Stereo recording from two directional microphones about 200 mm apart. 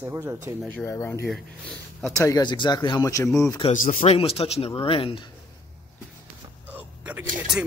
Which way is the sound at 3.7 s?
35° left (ahead or behind).